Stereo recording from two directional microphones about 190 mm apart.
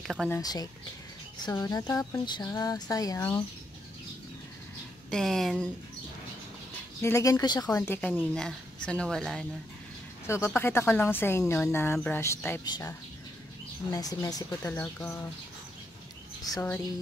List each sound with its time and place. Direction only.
0.0 s speech: centre (ahead or behind)
0.4 s speech: 20° left (ahead or behind)
5.1 s speech: centre (ahead or behind)
7.0 s speech: 15° left (ahead or behind)
10.2 s speech: 15° left (ahead or behind)
13.9 s speech: 20° left (ahead or behind)
16.5 s speech: 10° left (ahead or behind)